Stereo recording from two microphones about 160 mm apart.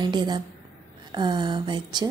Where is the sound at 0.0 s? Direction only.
25° right (ahead or behind).